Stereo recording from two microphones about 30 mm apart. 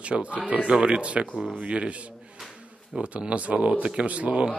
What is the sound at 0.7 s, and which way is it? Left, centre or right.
A man's voice, right.